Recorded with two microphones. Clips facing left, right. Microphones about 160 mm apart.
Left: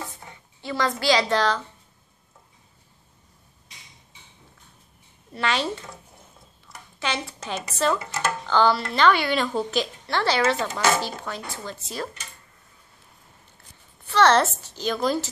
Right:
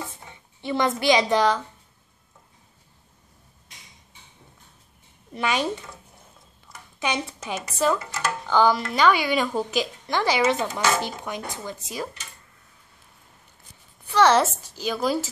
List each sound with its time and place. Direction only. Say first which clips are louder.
0.3 s speech: right 6 dB; 20° right (ahead or behind)
5.3 s speech: right 1 dB; 15° right (ahead or behind)
7.0 s speech: right 2 dB; 15° right (ahead or behind)
14.0 s speech: even; 10° right (ahead or behind)